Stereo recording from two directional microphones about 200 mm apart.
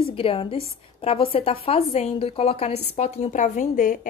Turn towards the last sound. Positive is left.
turn(degrees=40)  # may be behind; listen again after turning